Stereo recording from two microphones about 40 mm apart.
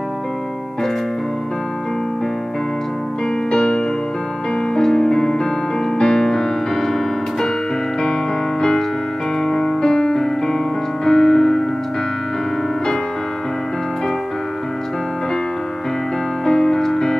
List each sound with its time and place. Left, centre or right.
3.5 s music: centre
5.9 s piano: centre
8.0 s music: centre
11.1 s piano: centre
16.4 s music: centre